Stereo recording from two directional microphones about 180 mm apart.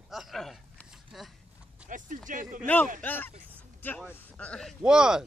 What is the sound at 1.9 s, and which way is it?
Speech, 45° right (ahead or behind).